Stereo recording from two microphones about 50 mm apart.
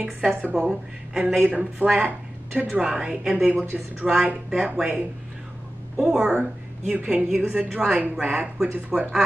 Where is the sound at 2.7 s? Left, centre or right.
Centre.